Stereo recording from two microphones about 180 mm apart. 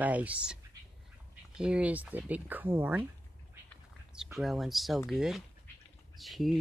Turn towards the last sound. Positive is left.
turn(degrees=0)  # may be behind; listen again after turning